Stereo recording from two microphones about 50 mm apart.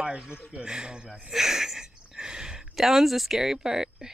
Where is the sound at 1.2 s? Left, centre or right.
Centre.